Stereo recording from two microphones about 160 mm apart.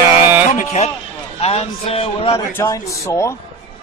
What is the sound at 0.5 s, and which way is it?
A man's voice, 45° left (ahead or behind).